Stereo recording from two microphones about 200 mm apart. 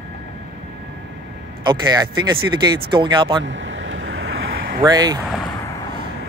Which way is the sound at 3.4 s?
70° right (ahead or behind).